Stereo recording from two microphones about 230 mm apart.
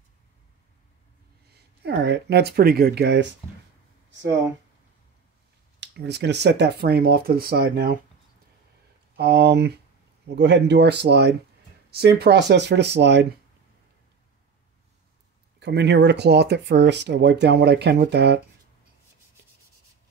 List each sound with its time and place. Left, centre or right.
1.5 s speech: right
5.8 s speech: right
9.1 s speech: right
15.6 s speech: right